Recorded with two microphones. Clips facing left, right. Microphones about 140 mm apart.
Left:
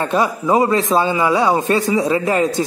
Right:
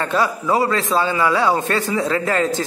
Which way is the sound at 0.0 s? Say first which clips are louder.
Left 2 dB; 20° left (ahead or behind).